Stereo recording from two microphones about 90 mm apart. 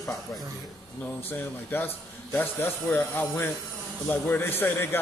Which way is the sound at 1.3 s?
25° left (ahead or behind).